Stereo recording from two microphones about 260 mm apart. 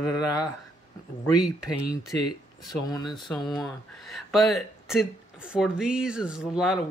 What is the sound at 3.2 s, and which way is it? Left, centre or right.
Speech, centre.